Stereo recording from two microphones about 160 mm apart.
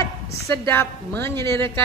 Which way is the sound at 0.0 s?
15° left (ahead or behind).